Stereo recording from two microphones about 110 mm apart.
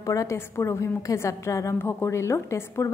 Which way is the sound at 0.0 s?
30° left (ahead or behind).